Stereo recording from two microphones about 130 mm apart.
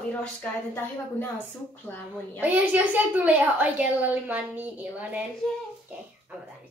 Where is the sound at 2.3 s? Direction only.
15° right (ahead or behind).